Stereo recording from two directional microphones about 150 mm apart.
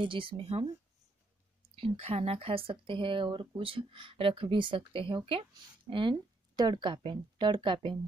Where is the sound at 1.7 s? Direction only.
40° right (ahead or behind).